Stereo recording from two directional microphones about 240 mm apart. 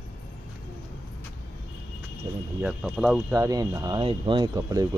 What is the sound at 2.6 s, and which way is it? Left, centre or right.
Speech, centre.